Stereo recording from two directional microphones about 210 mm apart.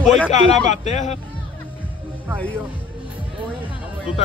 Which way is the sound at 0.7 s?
35° left (ahead or behind).